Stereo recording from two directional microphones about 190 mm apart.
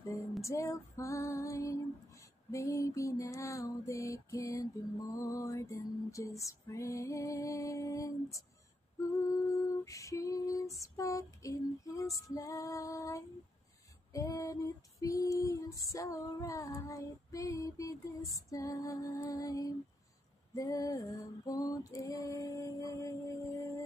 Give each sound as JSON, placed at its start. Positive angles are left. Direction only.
{"t": 0.4, "sound": "female singing", "side_deg": 15}